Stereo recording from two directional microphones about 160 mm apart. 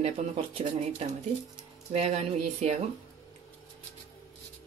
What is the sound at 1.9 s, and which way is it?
Speech, 40° right (ahead or behind).